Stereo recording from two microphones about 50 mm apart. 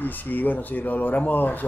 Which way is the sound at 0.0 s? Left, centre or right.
Left.